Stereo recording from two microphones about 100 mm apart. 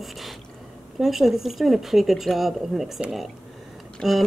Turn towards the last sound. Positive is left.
turn(degrees=0)  # may be behind; listen again after turning